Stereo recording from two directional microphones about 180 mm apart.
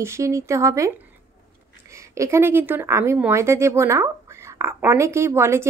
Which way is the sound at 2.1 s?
15° right (ahead or behind).